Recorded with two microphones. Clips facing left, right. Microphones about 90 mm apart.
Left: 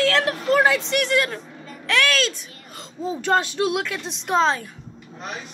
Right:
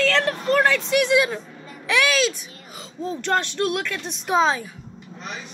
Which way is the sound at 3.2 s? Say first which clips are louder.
Left 2 dB; 5° left (ahead or behind).